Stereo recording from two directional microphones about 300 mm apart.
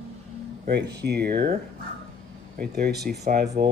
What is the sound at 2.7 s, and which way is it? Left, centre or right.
Speech, right.